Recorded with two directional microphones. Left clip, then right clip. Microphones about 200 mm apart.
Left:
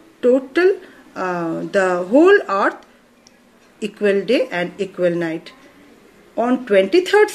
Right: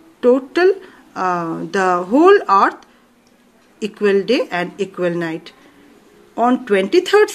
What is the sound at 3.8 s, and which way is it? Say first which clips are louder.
A woman's voice: right 2 dB; 40° right (ahead or behind).